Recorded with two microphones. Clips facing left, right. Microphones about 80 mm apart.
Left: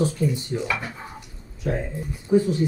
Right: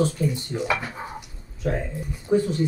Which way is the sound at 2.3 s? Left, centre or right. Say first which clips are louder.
Left 2 dB; right.